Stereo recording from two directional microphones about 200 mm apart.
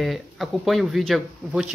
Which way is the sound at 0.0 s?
Centre (ahead or behind).